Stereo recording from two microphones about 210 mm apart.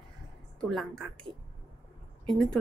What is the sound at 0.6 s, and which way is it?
Speech, centre (ahead or behind).